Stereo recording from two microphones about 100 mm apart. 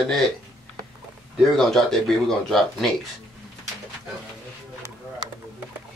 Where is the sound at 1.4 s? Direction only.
Centre (ahead or behind).